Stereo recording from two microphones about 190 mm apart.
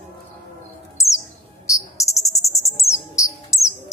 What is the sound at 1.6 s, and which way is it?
Cricket, 15° left (ahead or behind).